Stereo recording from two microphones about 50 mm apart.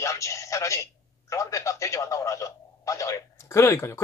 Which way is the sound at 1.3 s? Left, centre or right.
Left.